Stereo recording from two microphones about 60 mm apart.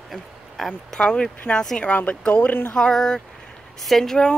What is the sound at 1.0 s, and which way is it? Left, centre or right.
Speech, centre.